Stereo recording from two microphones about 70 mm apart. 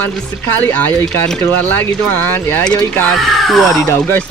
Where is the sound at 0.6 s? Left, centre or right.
Left.